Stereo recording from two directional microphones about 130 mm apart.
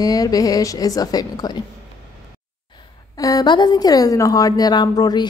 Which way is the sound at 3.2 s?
30° left (ahead or behind).